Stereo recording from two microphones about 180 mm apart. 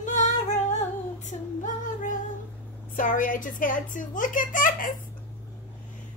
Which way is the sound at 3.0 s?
50° left (ahead or behind).